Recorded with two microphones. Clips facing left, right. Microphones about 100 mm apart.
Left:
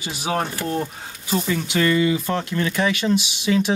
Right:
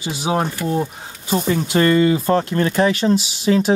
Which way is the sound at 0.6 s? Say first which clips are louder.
Right 4 dB; 10° right (ahead or behind).